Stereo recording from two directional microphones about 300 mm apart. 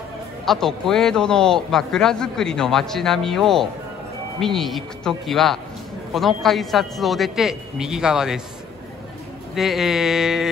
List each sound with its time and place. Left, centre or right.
0.5 s a man's voice: centre
9.6 s a man's voice: centre